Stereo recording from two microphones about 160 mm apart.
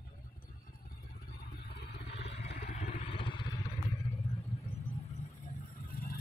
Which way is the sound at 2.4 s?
80° left.